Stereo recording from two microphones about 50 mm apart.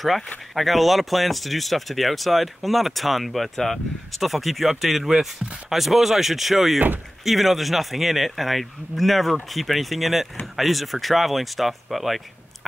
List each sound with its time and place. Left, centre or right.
0.6 s speech: centre